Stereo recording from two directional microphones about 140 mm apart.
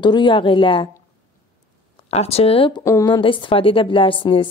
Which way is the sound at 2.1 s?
45° left (ahead or behind).